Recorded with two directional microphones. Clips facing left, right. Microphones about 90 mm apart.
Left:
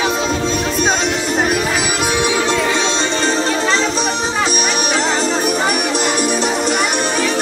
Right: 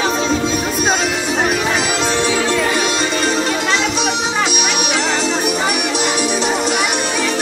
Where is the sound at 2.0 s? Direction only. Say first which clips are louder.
Even; 10° left (ahead or behind).